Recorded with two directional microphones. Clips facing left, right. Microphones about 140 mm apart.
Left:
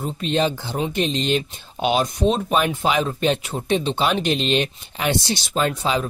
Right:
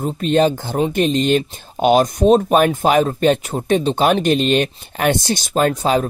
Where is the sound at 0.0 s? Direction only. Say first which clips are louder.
Right 6 dB; 45° right (ahead or behind).